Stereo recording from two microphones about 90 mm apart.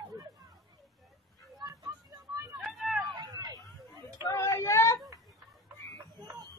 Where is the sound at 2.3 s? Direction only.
35° right (ahead or behind).